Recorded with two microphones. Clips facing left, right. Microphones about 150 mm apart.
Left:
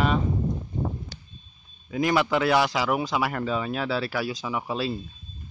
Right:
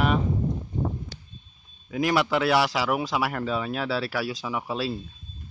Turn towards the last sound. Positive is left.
turn(degrees=0)  # may be behind; listen again after turning